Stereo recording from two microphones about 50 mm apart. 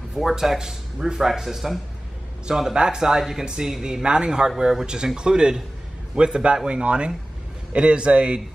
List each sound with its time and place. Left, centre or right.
0.1 s speech: centre